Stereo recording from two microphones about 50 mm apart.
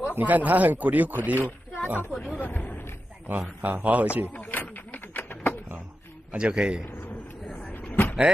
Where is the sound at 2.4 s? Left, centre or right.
Left.